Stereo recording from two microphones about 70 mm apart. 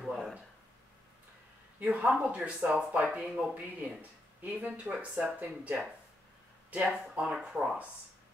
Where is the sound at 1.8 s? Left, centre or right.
Centre.